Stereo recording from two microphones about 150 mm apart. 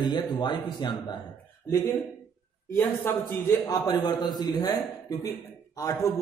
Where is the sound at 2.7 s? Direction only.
15° left (ahead or behind).